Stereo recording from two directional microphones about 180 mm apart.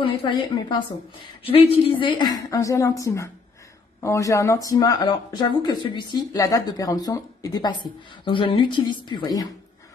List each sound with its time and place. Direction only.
0.0 s speech: 30° left (ahead or behind)